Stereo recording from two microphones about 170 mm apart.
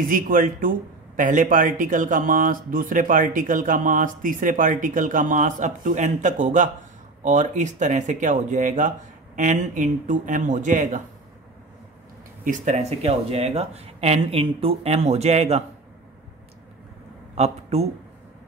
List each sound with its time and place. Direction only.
0.1 s speech: 55° right (ahead or behind)
12.4 s speech: 40° right (ahead or behind)
17.4 s speech: 40° right (ahead or behind)